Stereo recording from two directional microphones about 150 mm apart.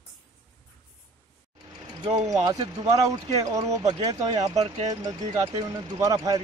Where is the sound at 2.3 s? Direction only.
25° right (ahead or behind).